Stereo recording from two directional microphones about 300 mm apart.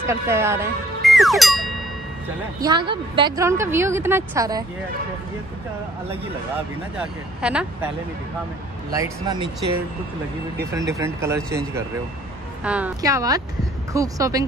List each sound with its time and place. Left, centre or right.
0.0 s speech: centre
2.6 s a woman's voice: centre
7.4 s speech: centre
8.9 s a woman's voice: centre
10.7 s a woman's voice: centre